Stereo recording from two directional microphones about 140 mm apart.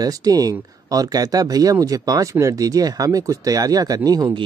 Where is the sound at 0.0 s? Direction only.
25° right (ahead or behind).